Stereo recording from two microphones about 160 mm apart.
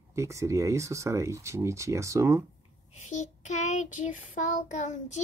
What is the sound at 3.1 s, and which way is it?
Child singing, 50° left (ahead or behind).